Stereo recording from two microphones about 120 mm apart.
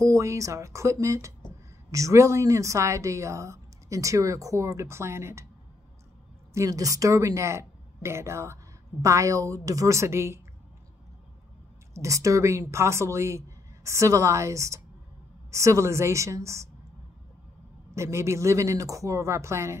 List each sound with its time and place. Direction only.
0.0 s a woman's voice: 25° right (ahead or behind)
6.5 s a woman's voice: 30° right (ahead or behind)
11.9 s a woman's voice: 25° right (ahead or behind)
17.9 s a woman's voice: 25° right (ahead or behind)